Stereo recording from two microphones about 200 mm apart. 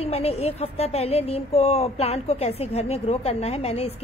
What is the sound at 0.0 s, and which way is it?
Speech, 30° left (ahead or behind).